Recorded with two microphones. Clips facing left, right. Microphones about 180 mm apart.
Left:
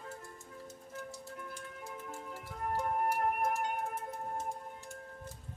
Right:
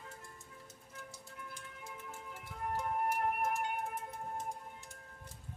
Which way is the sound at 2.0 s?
40° left (ahead or behind).